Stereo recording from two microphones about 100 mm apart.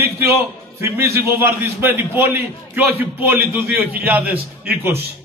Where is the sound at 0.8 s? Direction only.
30° right (ahead or behind).